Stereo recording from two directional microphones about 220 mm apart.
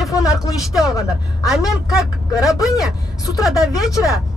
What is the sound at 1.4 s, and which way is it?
Speech, centre (ahead or behind).